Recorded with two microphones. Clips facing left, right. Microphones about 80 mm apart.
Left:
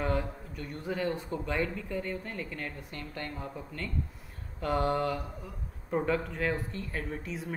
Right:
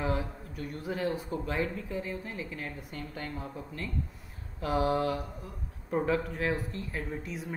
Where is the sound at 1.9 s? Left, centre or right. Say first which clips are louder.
Left 1 dB; left.